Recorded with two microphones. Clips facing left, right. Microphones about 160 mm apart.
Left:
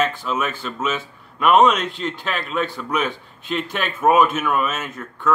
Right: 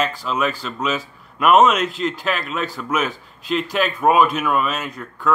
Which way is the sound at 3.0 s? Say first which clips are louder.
Even; 40° right (ahead or behind).